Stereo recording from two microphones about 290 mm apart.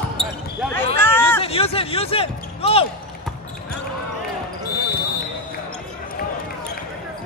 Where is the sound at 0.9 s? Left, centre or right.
Centre.